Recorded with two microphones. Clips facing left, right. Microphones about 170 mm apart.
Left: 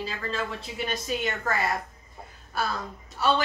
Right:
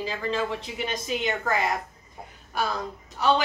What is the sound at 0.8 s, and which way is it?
Speech, 15° right (ahead or behind).